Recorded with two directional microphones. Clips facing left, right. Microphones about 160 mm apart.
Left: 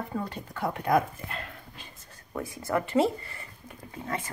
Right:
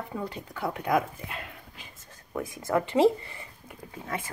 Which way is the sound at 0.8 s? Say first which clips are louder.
Left 2 dB; 10° right (ahead or behind).